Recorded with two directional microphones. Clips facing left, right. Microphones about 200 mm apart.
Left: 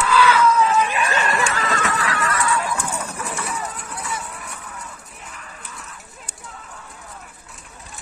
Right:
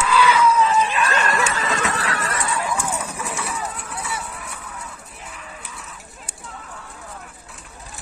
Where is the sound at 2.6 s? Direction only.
10° right (ahead or behind).